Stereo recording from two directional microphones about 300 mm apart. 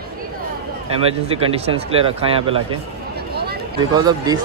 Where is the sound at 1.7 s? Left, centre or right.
Centre.